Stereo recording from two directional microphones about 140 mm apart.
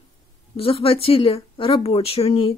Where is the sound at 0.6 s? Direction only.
40° left (ahead or behind).